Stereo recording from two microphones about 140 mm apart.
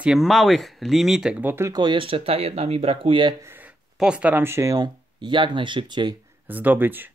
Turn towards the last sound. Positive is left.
turn(degrees=-15)  # may be behind; listen again after turning